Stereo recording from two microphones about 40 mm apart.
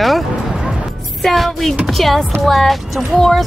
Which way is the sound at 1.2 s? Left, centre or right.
Centre.